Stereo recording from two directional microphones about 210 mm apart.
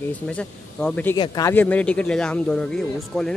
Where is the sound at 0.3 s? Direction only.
5° left (ahead or behind).